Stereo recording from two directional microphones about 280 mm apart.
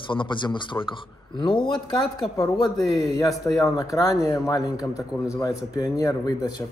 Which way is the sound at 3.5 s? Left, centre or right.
Centre.